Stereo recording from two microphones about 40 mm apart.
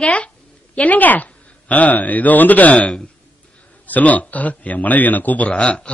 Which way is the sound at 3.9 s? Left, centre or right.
Left.